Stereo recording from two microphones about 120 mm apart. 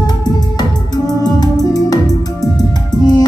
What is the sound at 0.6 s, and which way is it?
Music, 35° left (ahead or behind).